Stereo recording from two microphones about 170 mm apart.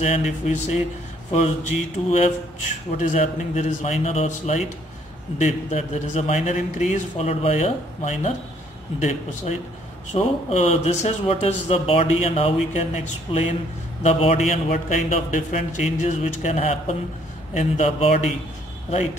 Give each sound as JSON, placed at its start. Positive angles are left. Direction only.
{"t": 0.0, "sound": "speech", "side_deg": 40}